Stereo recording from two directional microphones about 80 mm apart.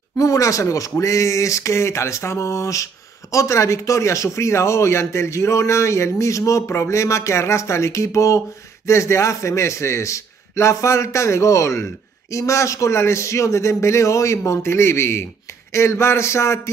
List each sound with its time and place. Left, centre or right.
0.2 s speech: left